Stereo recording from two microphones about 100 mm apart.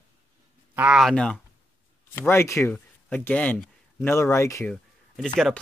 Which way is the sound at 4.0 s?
25° left (ahead or behind).